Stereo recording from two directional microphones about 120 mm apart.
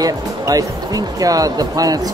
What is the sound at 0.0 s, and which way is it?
Speech, 30° right (ahead or behind).